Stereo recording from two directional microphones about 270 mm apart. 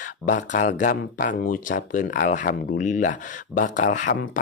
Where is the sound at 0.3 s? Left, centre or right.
Left.